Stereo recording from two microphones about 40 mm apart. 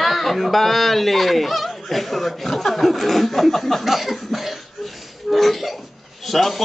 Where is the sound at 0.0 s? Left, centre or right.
Centre.